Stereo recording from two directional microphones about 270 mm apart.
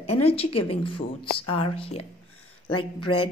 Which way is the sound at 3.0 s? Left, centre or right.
Left.